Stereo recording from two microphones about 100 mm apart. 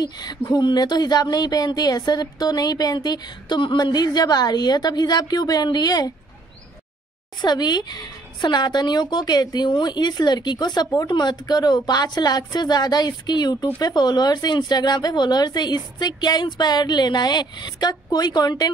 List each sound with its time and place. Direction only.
0.0 s speech: 45° left (ahead or behind)
7.4 s speech: 45° left (ahead or behind)